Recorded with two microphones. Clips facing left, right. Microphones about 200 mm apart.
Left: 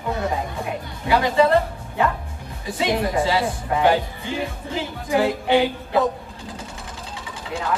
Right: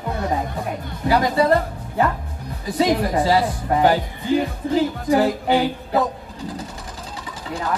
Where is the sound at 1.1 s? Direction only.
40° right (ahead or behind).